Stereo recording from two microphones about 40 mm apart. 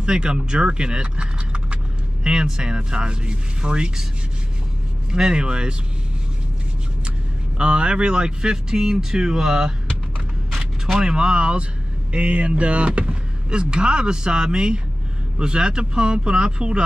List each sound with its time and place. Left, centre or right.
0.0 s speech: right
5.1 s speech: centre
7.5 s speech: right
11.0 s speech: centre